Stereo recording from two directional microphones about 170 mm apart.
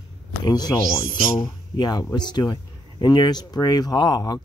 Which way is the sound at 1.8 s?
25° left (ahead or behind).